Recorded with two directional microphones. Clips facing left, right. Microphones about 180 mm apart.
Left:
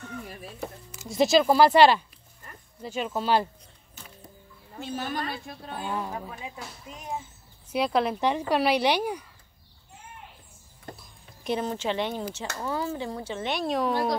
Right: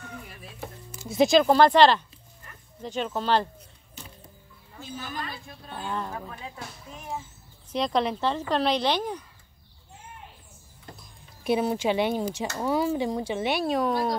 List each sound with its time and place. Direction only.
1.0 s a woman's voice: centre (ahead or behind)
4.7 s speech: 70° left (ahead or behind)
5.8 s a woman's voice: 10° left (ahead or behind)
11.0 s speech: 5° right (ahead or behind)